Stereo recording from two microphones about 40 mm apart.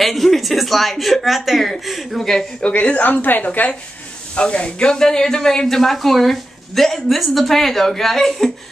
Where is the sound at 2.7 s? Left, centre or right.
Left.